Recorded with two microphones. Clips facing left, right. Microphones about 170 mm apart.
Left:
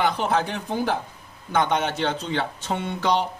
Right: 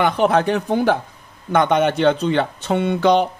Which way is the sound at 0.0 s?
60° right (ahead or behind).